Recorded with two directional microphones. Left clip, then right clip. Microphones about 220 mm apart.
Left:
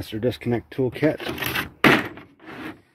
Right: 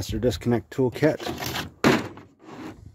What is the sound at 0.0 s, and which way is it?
Speech, 15° right (ahead or behind).